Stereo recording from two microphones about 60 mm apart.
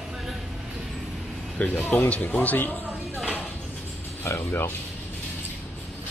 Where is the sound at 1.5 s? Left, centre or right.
Left.